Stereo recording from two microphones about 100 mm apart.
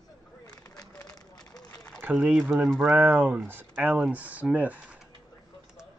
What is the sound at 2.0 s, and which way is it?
Speech, 15° right (ahead or behind).